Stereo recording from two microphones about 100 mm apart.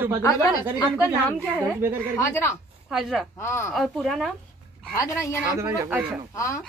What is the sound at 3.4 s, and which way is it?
Speech, 25° left (ahead or behind).